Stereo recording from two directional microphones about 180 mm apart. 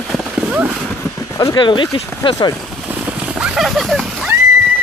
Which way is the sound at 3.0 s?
5° right (ahead or behind).